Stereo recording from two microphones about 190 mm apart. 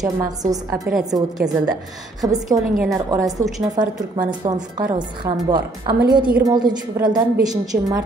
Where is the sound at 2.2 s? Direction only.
20° right (ahead or behind).